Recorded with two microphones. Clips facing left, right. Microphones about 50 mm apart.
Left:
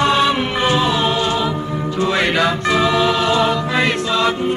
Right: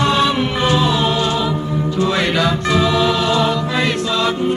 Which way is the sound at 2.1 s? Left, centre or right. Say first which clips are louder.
Even; left.